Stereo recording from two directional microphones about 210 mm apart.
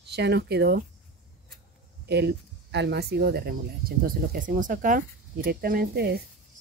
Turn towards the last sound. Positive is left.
turn(degrees=-50)  # may be behind; listen again after turning